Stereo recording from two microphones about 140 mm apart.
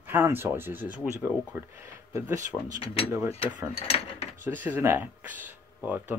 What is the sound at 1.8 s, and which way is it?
Speech, 20° right (ahead or behind).